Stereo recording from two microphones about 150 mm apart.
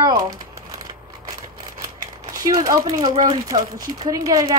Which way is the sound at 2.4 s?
25° right (ahead or behind).